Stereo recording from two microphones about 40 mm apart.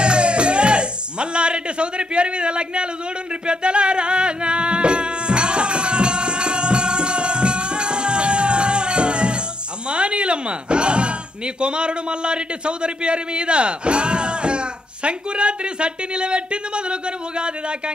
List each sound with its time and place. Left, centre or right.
0.0 s music: right
9.8 s speech: right